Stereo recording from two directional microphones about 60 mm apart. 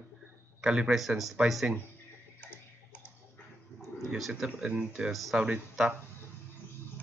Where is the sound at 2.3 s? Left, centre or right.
Left.